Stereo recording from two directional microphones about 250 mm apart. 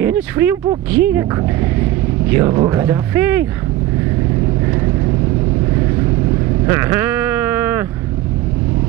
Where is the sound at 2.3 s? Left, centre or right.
Centre.